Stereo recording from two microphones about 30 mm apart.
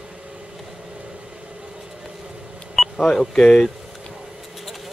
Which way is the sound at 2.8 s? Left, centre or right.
Centre.